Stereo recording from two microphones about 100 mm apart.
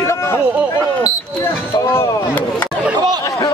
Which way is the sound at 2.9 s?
45° right (ahead or behind).